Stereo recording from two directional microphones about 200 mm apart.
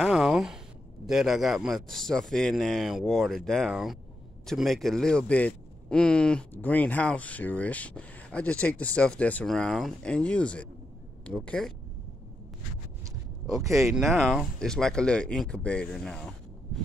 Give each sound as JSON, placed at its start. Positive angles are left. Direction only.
{"t": 0.0, "sound": "a sound", "side_deg": 0}
{"t": 1.0, "sound": "speech", "side_deg": 0}
{"t": 13.5, "sound": "speech", "side_deg": 0}